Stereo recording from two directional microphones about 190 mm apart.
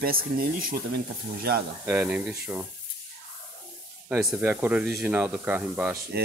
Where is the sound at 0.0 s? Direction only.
50° right (ahead or behind).